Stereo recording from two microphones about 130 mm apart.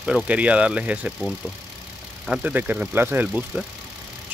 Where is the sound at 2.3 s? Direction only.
10° right (ahead or behind).